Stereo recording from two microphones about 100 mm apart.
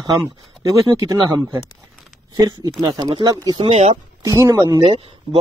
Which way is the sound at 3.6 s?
90° right.